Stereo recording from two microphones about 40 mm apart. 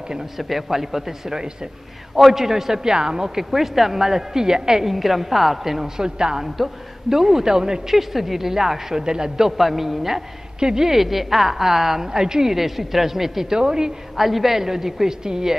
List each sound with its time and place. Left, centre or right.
0.4 s a woman's voice: centre
6.0 s a woman's voice: centre
6.4 s a woman's voice: centre
9.6 s a woman's voice: centre
13.6 s a woman's voice: centre
14.1 s a woman's voice: centre